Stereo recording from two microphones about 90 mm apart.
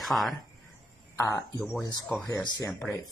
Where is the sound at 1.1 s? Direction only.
35° left (ahead or behind).